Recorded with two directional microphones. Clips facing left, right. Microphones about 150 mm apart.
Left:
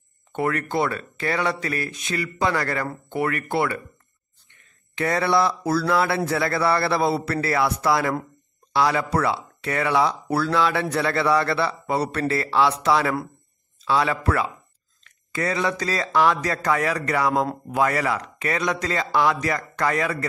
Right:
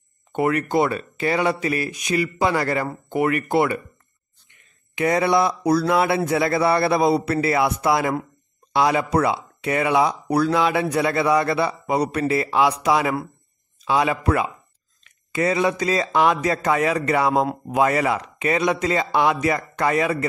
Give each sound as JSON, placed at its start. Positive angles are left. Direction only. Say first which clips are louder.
{"t": 0.3, "sound": "speech", "louder": "right 4 dB", "side_deg": -20}